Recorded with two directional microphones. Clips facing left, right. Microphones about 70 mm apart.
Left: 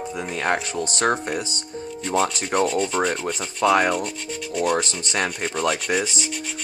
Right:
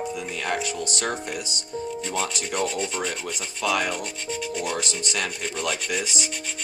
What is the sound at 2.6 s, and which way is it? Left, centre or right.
Rub, centre.